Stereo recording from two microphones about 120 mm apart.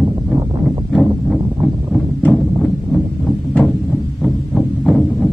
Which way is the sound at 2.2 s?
10° left (ahead or behind).